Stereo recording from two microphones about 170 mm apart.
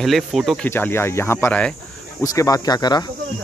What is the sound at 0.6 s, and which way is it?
Speech, 10° left (ahead or behind).